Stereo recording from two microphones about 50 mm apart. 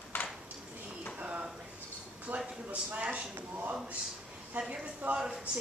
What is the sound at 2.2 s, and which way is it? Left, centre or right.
A man's voice, right.